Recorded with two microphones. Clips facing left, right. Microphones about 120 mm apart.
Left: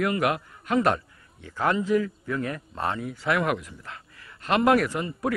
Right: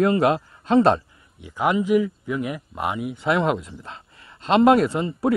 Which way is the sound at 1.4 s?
15° right (ahead or behind).